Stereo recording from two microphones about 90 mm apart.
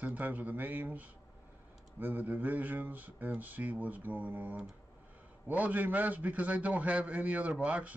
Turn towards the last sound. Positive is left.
turn(degrees=-15)  # may be behind; listen again after turning